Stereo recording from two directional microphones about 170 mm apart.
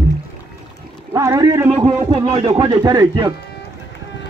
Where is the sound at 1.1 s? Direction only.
20° right (ahead or behind).